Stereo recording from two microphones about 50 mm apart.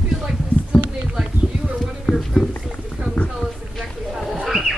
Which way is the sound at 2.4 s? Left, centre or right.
Centre.